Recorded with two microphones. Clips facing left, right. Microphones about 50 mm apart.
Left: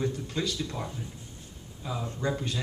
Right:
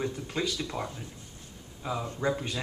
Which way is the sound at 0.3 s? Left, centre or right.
Right.